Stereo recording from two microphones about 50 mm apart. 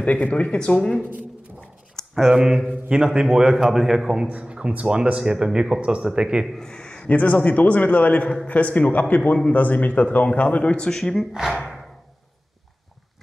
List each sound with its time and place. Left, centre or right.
0.0 s a man's voice: left
2.1 s a man's voice: centre
4.3 s a man's voice: right
6.6 s a sound: centre
7.1 s a man's voice: left
11.3 s a man's voice: centre